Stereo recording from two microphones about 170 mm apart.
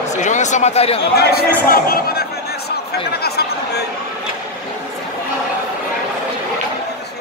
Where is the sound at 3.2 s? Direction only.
70° left (ahead or behind).